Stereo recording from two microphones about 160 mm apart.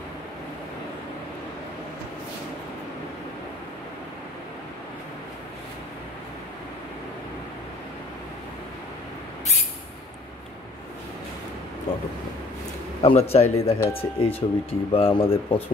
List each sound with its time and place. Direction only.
13.0 s speech: 40° left (ahead or behind)